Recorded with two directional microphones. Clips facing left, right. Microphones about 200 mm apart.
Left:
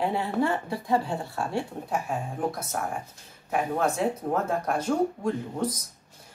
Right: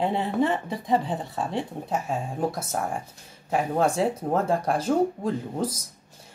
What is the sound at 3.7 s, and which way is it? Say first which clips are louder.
Speech: right 3 dB; 30° right (ahead or behind).